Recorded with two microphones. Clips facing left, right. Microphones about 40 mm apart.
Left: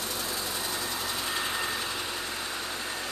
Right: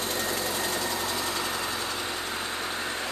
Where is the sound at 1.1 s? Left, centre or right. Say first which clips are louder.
Right 1 dB; centre.